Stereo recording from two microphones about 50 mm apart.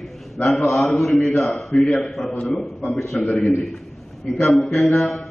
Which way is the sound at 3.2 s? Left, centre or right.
Left.